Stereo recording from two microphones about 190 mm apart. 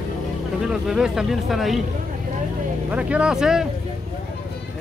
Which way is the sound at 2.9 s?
5° right (ahead or behind).